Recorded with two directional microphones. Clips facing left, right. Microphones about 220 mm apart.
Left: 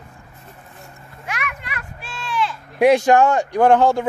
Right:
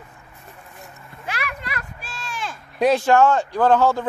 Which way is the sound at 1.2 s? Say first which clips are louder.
Even; 35° right (ahead or behind).